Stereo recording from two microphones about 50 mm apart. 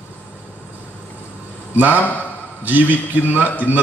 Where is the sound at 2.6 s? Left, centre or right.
Right.